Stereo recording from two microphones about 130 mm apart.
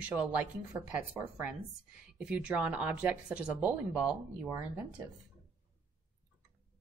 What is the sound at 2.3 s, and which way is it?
Speech, 10° right (ahead or behind).